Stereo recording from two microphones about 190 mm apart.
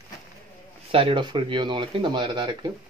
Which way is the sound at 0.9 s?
30° right (ahead or behind).